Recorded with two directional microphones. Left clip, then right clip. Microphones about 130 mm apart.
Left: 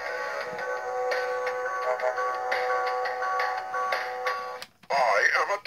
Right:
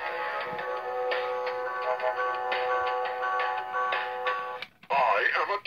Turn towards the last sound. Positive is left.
turn(degrees=70)  # may be behind; listen again after turning